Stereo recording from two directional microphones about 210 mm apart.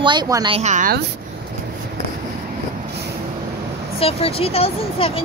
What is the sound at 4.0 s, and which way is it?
Speech, 25° left (ahead or behind).